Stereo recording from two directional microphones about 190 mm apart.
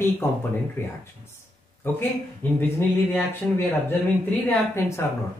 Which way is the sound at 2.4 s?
10° left (ahead or behind).